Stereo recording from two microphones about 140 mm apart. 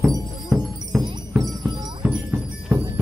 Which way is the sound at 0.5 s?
Centre (ahead or behind).